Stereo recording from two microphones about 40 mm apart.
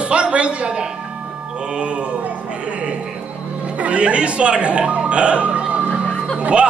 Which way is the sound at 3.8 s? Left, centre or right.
Right.